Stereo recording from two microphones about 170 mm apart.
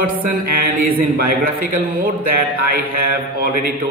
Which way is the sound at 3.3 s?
60° right (ahead or behind).